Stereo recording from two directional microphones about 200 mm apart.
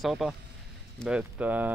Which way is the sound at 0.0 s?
Centre (ahead or behind).